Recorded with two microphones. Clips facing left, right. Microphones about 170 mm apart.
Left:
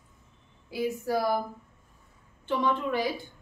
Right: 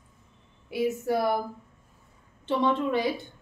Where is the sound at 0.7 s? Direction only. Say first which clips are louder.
Right 2 dB; 25° right (ahead or behind).